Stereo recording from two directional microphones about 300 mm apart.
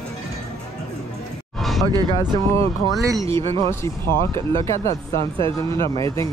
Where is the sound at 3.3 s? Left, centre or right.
Centre.